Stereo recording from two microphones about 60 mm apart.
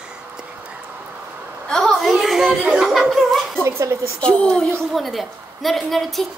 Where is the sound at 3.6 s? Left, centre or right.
Right.